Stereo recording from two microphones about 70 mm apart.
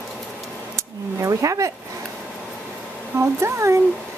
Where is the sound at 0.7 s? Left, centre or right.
Right.